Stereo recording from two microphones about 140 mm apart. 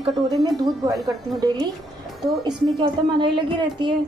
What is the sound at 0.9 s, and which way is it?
A woman's voice, 25° right (ahead or behind).